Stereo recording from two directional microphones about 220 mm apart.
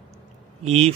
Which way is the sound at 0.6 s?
30° right (ahead or behind).